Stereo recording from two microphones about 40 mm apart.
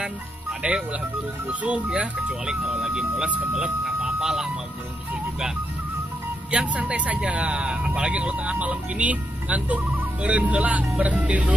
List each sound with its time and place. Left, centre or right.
0.0 s speech: right
1.5 s speech: right
2.4 s speech: centre
6.5 s speech: right